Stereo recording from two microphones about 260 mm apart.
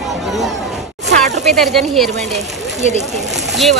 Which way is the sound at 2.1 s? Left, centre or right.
Right.